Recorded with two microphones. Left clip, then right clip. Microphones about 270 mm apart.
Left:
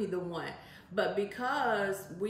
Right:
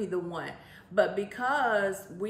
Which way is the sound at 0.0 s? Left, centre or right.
Centre.